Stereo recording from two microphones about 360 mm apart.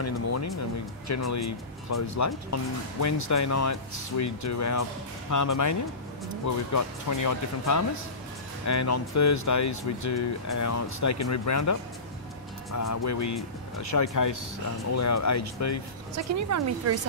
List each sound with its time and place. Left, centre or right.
0.0 s speech: left
16.2 s speech: right